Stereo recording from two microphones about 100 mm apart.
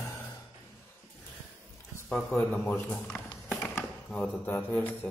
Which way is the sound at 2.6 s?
25° left (ahead or behind).